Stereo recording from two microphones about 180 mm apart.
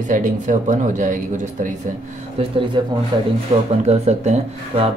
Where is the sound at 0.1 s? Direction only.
45° right (ahead or behind).